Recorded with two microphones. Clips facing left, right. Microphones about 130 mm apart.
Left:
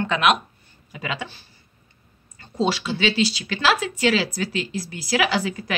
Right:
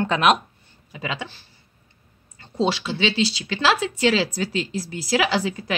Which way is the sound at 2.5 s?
25° right (ahead or behind).